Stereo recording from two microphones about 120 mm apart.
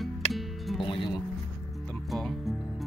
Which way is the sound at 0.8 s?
40° left (ahead or behind).